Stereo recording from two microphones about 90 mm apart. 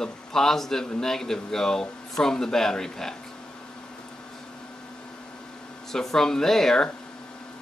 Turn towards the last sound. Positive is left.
turn(degrees=5)  # may be behind; listen again after turning